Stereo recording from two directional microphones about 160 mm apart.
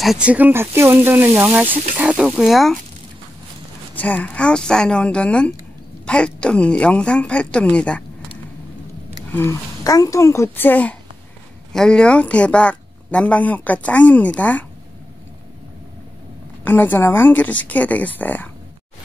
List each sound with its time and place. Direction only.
0.0 s speech: 5° right (ahead or behind)
3.9 s a woman's voice: 10° left (ahead or behind)
9.3 s a woman's voice: 15° left (ahead or behind)
16.6 s a woman's voice: 10° left (ahead or behind)